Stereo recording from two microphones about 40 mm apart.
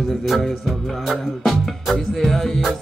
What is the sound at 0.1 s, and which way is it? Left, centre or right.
Music, centre.